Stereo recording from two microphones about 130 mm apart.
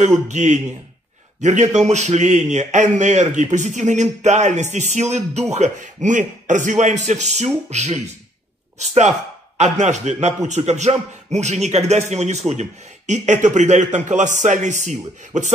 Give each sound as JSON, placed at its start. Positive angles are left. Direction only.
{"t": 0.0, "sound": "a man's voice", "side_deg": -65}